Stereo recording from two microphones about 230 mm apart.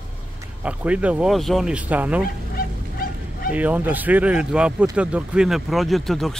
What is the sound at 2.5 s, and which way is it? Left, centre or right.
Goose, left.